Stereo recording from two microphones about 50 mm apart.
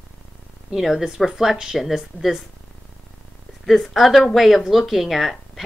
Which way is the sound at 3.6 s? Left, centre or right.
Centre.